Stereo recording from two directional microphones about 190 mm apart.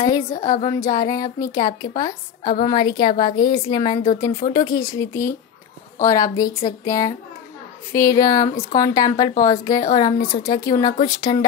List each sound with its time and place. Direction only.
0.0 s a woman's voice: 20° left (ahead or behind)
0.4 s speech: 45° left (ahead or behind)
0.7 s a woman's voice: 20° left (ahead or behind)